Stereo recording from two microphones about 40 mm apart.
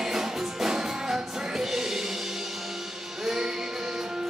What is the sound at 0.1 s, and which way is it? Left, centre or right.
Music, centre.